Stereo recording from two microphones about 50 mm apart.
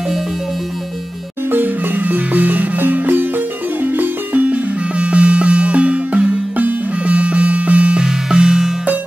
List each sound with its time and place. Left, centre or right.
1.5 s music: right; by 8.7 s centre